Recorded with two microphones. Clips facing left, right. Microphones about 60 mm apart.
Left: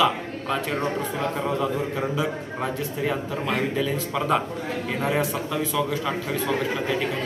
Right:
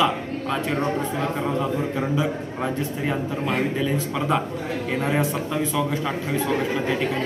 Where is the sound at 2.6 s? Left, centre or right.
Centre.